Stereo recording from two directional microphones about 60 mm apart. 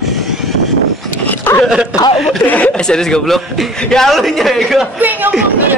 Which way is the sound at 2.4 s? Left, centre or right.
Left.